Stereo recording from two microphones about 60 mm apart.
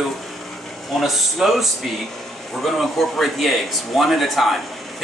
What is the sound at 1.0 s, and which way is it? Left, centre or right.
A man's voice, centre.